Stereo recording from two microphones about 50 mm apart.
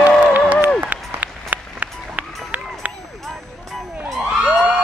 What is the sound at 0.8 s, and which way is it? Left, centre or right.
Applause, right.